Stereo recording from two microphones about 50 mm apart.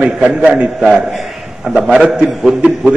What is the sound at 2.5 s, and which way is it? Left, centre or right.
Speech, centre.